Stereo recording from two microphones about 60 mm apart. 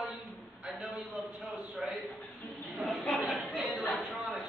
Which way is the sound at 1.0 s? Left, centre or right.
Centre.